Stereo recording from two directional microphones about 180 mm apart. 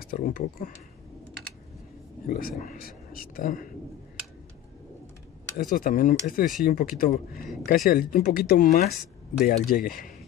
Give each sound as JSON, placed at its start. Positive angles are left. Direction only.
{"t": 0.0, "sound": "speech", "side_deg": 50}
{"t": 2.2, "sound": "speech", "side_deg": 55}
{"t": 5.8, "sound": "speech", "side_deg": 50}